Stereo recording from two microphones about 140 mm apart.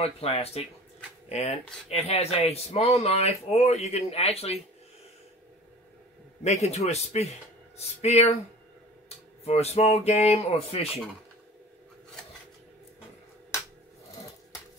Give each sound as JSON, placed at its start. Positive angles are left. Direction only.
{"t": 0.0, "sound": "speech", "side_deg": 45}
{"t": 6.4, "sound": "speech", "side_deg": 50}
{"t": 9.4, "sound": "speech", "side_deg": 45}